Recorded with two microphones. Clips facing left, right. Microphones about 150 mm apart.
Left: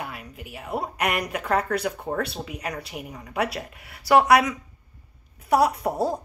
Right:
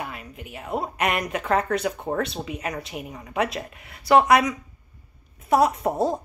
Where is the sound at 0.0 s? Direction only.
Centre (ahead or behind).